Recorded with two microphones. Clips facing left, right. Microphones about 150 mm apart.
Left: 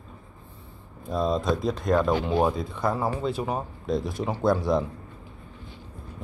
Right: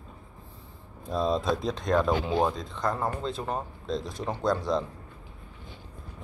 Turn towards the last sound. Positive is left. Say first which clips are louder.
# left 4 dB
turn(degrees=5)  # may be behind; listen again after turning